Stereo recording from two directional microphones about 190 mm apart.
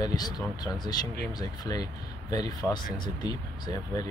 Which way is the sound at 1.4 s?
20° left (ahead or behind).